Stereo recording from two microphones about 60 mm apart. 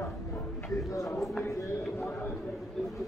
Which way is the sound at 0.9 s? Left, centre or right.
Left.